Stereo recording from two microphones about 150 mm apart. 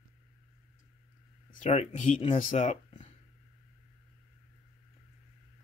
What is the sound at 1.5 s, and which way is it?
Speech, 50° left (ahead or behind).